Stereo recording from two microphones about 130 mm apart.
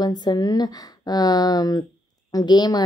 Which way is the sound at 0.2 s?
30° left (ahead or behind).